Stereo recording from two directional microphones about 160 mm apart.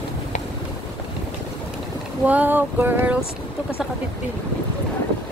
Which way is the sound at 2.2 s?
10° right (ahead or behind).